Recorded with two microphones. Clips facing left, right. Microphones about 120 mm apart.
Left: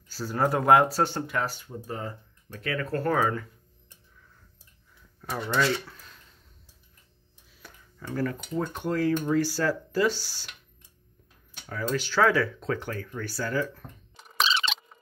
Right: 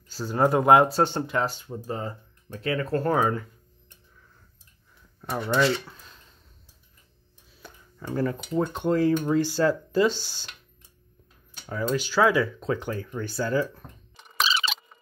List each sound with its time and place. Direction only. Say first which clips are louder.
0.1 s speech: right 4 dB; 20° right (ahead or behind)
5.3 s speech: right 3 dB; 20° right (ahead or behind)
7.6 s tick-tock: right 4 dB; 25° right (ahead or behind)
8.5 s speech: right 5 dB; 25° right (ahead or behind)
11.7 s speech: right 2 dB; 15° right (ahead or behind)
14.1 s a sound: even; centre (ahead or behind)